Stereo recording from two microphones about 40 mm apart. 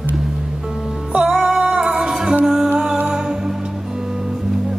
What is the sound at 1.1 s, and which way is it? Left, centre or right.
Music, right.